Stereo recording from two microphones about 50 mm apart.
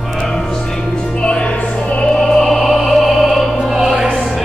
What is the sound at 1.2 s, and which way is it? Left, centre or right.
Music, left.